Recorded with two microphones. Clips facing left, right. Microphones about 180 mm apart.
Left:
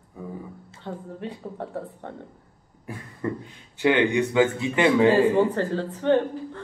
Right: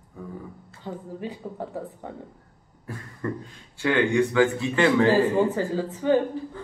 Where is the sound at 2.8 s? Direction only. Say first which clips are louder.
Left 1 dB; 20° left (ahead or behind).